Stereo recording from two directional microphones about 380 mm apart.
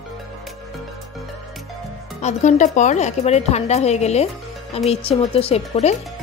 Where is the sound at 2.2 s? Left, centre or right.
Centre.